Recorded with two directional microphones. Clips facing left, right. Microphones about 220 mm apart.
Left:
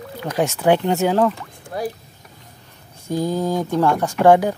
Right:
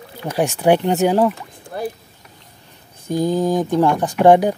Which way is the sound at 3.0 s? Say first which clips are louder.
Right 3 dB; 15° right (ahead or behind).